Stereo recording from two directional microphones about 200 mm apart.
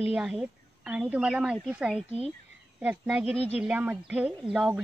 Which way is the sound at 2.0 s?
30° right (ahead or behind).